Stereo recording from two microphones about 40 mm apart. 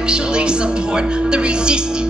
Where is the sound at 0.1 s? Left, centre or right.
Right.